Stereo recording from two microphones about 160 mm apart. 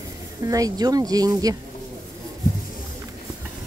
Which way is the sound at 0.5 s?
20° right (ahead or behind).